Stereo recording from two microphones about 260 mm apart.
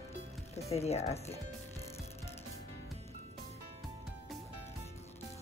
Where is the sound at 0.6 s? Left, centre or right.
Left.